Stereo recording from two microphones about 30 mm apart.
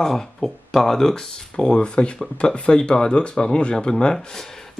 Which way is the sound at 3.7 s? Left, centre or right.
Centre.